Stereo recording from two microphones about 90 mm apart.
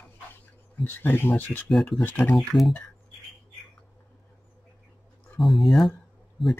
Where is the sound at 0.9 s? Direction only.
20° left (ahead or behind).